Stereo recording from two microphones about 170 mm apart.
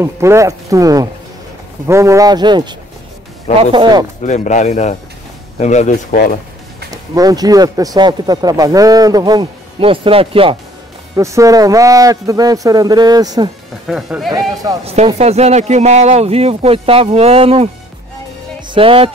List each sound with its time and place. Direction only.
0.0 s speech: 15° right (ahead or behind)
3.7 s speech: 30° right (ahead or behind)
4.2 s speech: 45° left (ahead or behind)
6.9 s speech: 20° right (ahead or behind)
11.1 s speech: 20° right (ahead or behind)
13.8 s speech: centre (ahead or behind)
15.1 s speech: 40° right (ahead or behind)
18.7 s speech: 30° right (ahead or behind)